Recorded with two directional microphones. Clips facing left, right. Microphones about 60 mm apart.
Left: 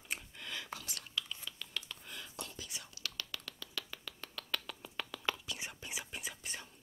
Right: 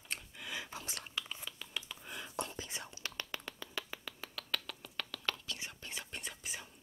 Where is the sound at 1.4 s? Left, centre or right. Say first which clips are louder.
Even; centre.